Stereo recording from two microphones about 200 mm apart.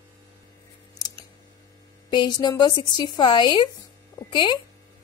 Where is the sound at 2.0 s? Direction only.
20° left (ahead or behind).